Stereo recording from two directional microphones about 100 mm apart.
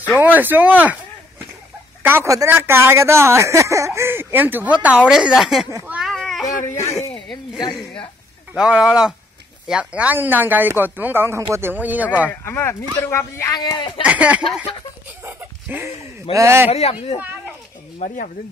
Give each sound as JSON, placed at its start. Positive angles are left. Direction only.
{"t": 0.2, "sound": "speech", "side_deg": -20}
{"t": 2.0, "sound": "a woman's voice", "side_deg": -25}
{"t": 6.0, "sound": "a sound", "side_deg": 0}
{"t": 6.4, "sound": "speech", "side_deg": 30}
{"t": 8.5, "sound": "speech", "side_deg": -10}
{"t": 12.1, "sound": "speech", "side_deg": 15}
{"t": 13.5, "sound": "speech", "side_deg": 40}
{"t": 13.7, "sound": "speech", "side_deg": 50}
{"t": 14.0, "sound": "speech", "side_deg": -15}
{"t": 15.2, "sound": "a sound", "side_deg": -15}
{"t": 16.3, "sound": "speech", "side_deg": -25}